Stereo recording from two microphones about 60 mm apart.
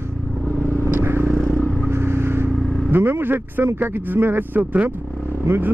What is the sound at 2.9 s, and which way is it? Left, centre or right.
A man's voice, right.